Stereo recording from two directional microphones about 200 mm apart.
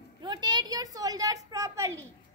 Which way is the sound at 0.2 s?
20° right (ahead or behind).